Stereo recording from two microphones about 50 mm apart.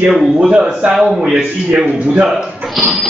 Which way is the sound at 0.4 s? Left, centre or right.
Centre.